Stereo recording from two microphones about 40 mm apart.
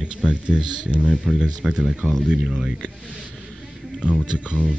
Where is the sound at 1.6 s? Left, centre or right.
Centre.